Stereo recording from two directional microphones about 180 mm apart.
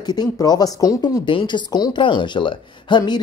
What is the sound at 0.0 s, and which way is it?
Speech, 25° left (ahead or behind).